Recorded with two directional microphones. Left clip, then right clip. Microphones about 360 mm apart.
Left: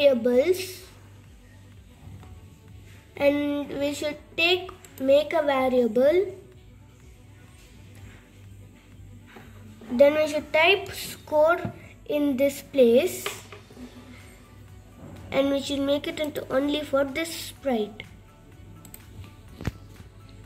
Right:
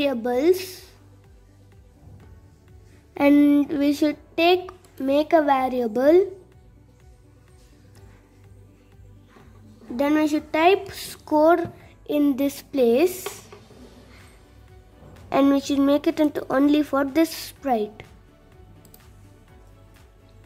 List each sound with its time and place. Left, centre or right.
0.0 s a woman's voice: right
3.2 s a woman's voice: right
9.9 s a woman's voice: right
15.2 s a woman's voice: right